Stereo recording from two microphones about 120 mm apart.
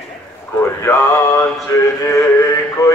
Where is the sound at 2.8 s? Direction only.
30° left (ahead or behind).